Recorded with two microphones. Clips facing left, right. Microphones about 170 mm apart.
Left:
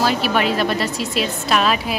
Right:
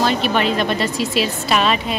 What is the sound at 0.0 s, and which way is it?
A woman's voice, 5° left (ahead or behind).